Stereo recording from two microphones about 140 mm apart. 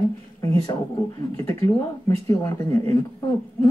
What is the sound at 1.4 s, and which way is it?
Speech, 20° left (ahead or behind).